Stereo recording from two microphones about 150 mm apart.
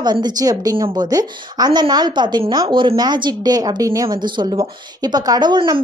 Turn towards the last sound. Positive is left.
turn(degrees=-30)  # may be behind; listen again after turning